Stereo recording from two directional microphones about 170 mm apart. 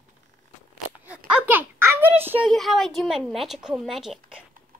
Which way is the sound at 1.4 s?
10° right (ahead or behind).